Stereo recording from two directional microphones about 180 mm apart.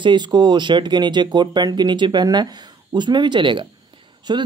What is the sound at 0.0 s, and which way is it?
Speech, 25° right (ahead or behind).